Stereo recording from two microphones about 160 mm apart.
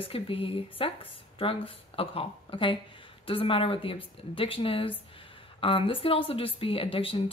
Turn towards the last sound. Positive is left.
turn(degrees=35)  # may be behind; listen again after turning